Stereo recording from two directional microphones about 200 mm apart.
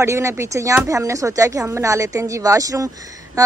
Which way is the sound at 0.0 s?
15° right (ahead or behind).